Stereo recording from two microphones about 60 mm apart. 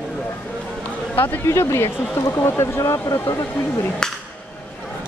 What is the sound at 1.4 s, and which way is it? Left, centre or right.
Speech, left.